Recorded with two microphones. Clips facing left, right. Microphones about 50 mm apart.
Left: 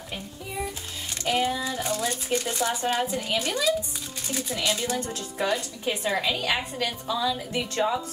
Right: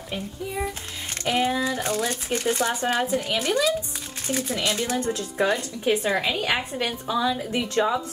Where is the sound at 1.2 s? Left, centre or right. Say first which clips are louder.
Right 2 dB; right; by 7.6 s centre.